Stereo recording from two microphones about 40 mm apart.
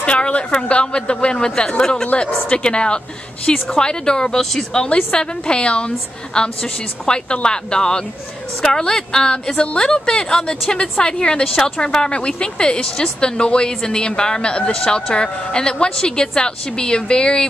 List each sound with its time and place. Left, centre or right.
0.0 s a sound: left
0.7 s speech: left; by 4.8 s centre
4.8 s speech: left